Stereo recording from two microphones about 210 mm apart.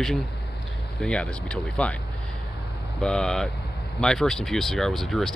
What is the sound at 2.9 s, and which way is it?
Speech, 5° left (ahead or behind).